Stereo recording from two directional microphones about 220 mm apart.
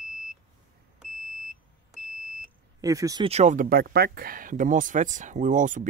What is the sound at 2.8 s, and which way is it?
Speech, 15° right (ahead or behind).